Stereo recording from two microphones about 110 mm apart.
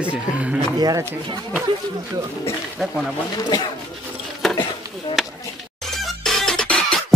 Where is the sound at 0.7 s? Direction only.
35° right (ahead or behind).